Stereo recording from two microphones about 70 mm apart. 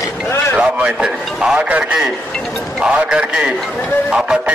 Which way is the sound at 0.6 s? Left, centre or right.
Centre.